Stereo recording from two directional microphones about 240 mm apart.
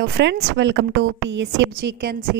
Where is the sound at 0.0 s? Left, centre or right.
Right.